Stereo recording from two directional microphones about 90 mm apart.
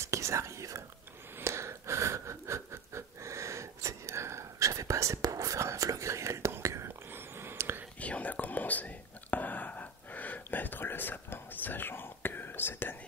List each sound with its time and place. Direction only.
0.0 s whispering: 35° right (ahead or behind)
1.4 s a sound: 30° right (ahead or behind)
8.0 s whispering: 15° left (ahead or behind)